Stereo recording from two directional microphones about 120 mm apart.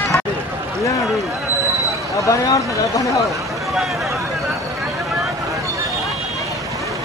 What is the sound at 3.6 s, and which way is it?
Speech, centre (ahead or behind).